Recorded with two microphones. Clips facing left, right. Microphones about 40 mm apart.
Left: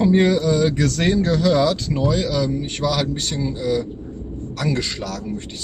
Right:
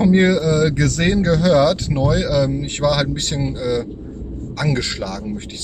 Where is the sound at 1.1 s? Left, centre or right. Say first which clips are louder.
Right 3 dB; right.